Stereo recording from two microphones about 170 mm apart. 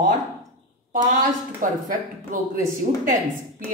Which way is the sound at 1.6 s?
50° right (ahead or behind).